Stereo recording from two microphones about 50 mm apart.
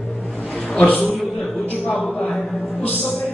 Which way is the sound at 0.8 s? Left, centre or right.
Left.